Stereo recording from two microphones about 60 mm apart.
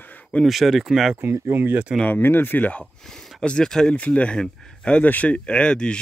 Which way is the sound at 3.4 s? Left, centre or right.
Centre.